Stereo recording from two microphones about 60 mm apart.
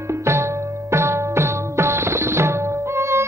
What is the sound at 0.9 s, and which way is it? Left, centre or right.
Music, right.